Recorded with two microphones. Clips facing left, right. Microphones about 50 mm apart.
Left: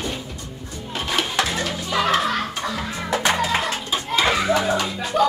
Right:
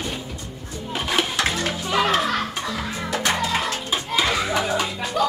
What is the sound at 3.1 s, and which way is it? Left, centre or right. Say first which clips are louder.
Music: left 3 dB; left.